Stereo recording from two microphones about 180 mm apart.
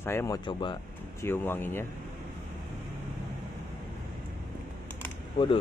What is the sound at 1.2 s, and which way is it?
Speech, 10° left (ahead or behind).